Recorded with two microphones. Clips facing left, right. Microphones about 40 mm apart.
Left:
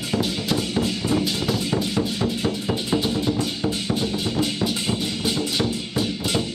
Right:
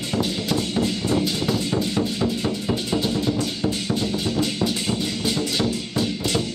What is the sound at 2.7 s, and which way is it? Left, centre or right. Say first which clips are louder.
Music: even; centre.